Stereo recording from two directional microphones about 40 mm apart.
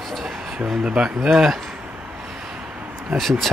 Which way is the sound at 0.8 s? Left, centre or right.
Right.